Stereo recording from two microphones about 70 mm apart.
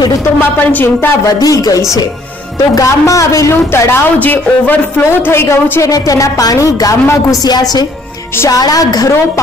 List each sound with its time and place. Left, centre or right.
0.4 s a woman's voice: left
1.4 s a woman's voice: left
3.7 s a woman's voice: left
4.2 s speech: left
5.9 s a woman's voice: left
7.4 s a woman's voice: left
8.5 s a woman's voice: left